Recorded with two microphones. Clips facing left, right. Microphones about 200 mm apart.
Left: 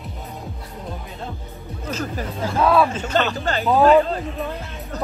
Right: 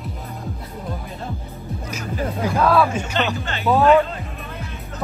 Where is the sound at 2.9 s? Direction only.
10° right (ahead or behind).